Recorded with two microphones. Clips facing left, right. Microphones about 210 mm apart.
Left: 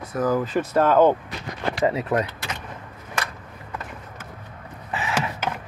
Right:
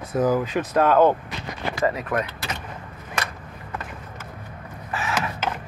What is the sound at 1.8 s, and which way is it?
Speech, 25° left (ahead or behind).